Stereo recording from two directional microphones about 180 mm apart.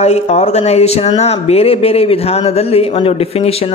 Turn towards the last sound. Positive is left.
turn(degrees=35)  # may be behind; listen again after turning